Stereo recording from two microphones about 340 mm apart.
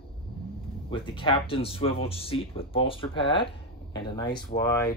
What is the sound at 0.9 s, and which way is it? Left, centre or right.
Speech, centre.